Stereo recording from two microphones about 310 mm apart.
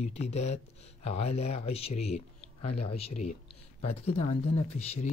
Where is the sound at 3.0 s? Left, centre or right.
Left.